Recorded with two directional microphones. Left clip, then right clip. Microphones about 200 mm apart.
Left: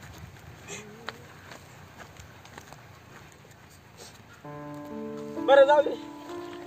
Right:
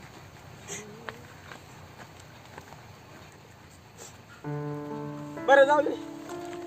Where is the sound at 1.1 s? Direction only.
55° left (ahead or behind).